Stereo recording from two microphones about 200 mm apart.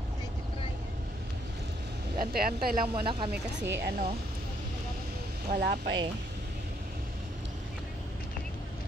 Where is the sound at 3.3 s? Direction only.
60° right (ahead or behind).